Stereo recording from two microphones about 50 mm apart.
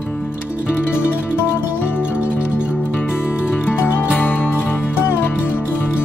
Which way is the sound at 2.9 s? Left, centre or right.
Centre.